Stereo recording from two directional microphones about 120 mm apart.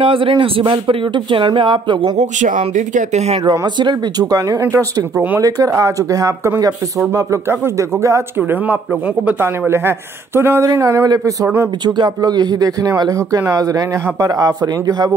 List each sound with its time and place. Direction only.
0.0 s speech: 50° right (ahead or behind)
2.1 s speech: 90° right; by 3.3 s 70° right (ahead or behind)
3.4 s speech: 40° right (ahead or behind); by 11.7 s 25° right (ahead or behind)
11.8 s speech: 35° right (ahead or behind)